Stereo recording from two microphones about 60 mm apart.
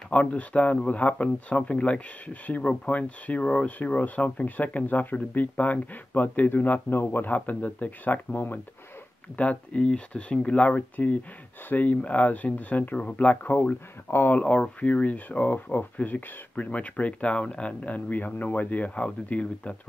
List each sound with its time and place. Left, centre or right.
0.1 s speech: left
14.4 s speech: centre